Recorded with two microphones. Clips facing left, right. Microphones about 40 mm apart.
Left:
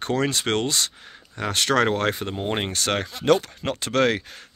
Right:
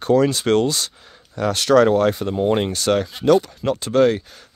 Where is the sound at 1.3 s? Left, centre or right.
Left.